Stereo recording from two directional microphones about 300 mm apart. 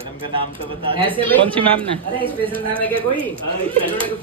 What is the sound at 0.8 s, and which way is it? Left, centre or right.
Speech, centre.